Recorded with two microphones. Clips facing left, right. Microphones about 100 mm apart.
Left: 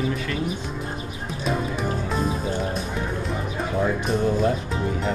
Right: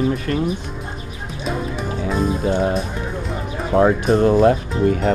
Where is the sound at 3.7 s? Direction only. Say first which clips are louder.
Right 9 dB; 70° right (ahead or behind).